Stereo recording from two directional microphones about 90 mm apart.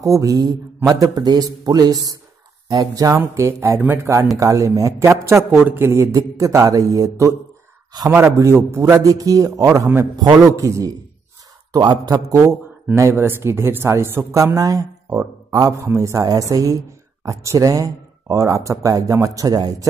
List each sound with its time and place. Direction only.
0.0 s a man's voice: 40° right (ahead or behind)
3.2 s speech: 30° right (ahead or behind)
4.4 s a man's voice: 40° right (ahead or behind)
10.5 s speech: 40° right (ahead or behind)
13.1 s speech: 30° right (ahead or behind)